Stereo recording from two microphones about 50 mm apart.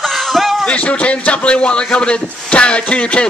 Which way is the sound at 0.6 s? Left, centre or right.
Left.